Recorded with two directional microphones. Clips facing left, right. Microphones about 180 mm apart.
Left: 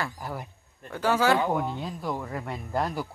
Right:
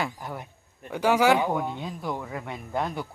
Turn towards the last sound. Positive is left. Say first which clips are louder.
# left 1 dB
turn(degrees=0)  # may be behind; listen again after turning